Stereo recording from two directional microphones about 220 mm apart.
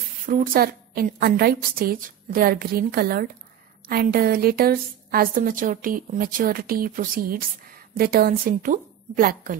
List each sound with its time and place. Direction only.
0.3 s a woman's voice: 40° right (ahead or behind)